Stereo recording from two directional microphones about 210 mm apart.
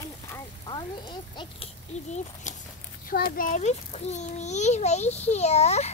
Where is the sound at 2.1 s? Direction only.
35° left (ahead or behind).